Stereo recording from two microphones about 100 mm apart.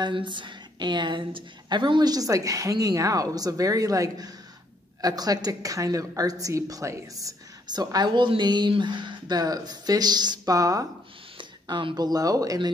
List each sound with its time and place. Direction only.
0.0 s a woman's voice: 50° right (ahead or behind); by 10.9 s 35° right (ahead or behind)
11.3 s speech: 50° right (ahead or behind); by 12.5 s 35° right (ahead or behind)